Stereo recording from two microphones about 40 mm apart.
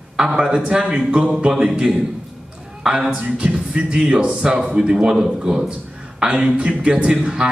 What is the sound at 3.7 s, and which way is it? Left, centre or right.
Music, right.